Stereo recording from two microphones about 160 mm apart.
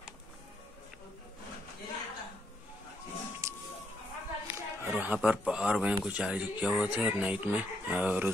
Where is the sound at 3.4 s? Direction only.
20° right (ahead or behind).